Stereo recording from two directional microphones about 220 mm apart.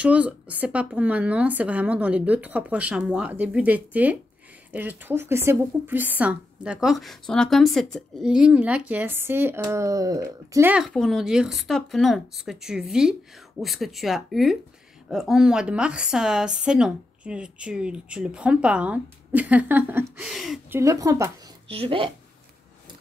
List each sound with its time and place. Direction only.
0.0 s a woman's voice: 5° right (ahead or behind)
20.8 s speech: 15° right (ahead or behind)
21.6 s a woman's voice: 25° right (ahead or behind)